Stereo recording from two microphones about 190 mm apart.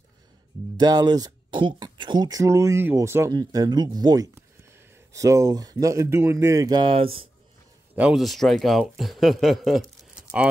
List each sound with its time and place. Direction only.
0.7 s speech: 20° right (ahead or behind)
7.9 s a man's voice: 5° right (ahead or behind)